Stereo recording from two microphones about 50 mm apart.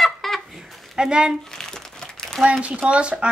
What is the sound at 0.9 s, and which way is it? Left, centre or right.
Speech, centre.